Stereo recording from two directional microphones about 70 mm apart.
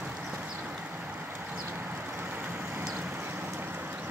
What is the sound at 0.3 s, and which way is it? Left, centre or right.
Vehicle, centre.